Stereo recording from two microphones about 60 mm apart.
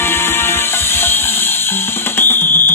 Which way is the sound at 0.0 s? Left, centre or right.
Left.